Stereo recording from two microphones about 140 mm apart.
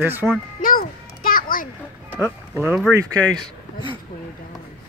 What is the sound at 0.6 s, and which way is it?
Music, 85° left.